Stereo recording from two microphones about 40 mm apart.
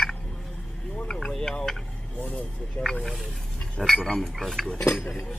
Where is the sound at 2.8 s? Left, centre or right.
Centre.